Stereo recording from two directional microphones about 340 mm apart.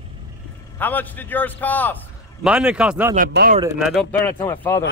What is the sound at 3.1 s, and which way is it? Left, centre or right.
Speech, right.